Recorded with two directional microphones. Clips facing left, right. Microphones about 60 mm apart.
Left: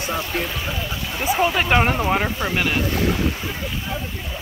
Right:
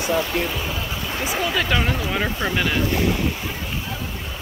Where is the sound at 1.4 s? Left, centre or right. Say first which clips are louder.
Left 4 dB; left.